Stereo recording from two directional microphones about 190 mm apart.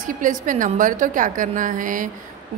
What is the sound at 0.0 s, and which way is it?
A woman's voice, 45° right (ahead or behind).